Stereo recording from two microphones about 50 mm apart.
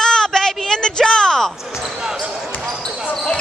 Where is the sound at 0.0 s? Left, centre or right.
Centre.